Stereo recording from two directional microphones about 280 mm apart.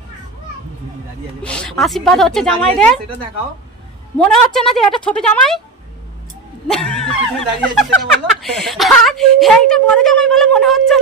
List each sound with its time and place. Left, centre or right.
1.4 s speech: centre
4.2 s speech: centre
6.7 s speech: centre